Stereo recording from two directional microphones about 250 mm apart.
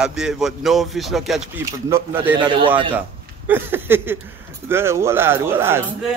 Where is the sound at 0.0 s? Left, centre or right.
Centre.